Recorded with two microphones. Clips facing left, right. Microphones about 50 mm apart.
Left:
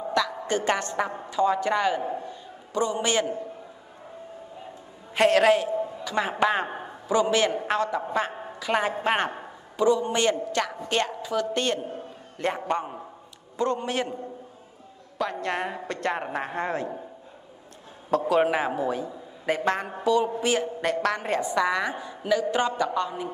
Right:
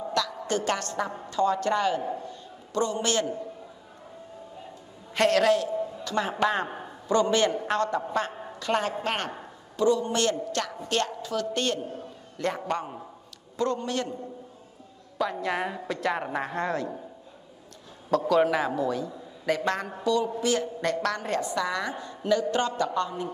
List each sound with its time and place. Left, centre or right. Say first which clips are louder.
0.0 s a woman's voice: left 3 dB; centre
5.1 s a man's voice: left 2 dB; centre
15.1 s a woman's voice: even; centre
16.3 s a woman's voice: even; centre
16.6 s a man's voice: even; left
18.1 s a man's voice: even; left